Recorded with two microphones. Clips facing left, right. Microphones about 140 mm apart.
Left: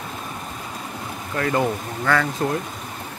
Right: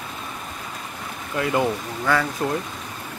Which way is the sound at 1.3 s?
15° right (ahead or behind).